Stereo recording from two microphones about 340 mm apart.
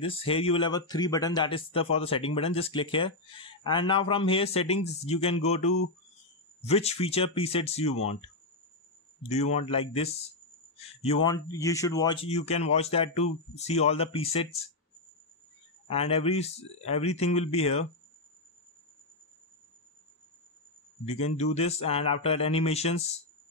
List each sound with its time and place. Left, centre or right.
0.0 s speech: centre
9.3 s speech: centre
15.9 s speech: centre
21.0 s speech: centre